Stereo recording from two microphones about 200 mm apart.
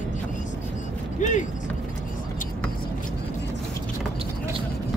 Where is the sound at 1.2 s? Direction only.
40° left (ahead or behind).